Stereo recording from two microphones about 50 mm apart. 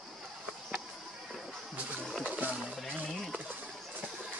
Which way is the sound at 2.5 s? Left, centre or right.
Centre.